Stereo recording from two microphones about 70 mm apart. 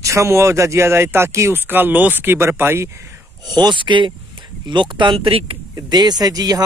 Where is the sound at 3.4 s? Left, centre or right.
Right.